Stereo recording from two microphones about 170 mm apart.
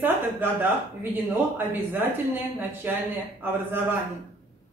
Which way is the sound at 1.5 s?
10° right (ahead or behind).